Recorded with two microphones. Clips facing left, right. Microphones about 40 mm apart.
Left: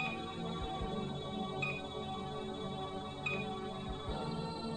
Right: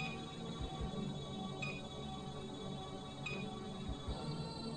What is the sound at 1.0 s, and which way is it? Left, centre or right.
Music, left.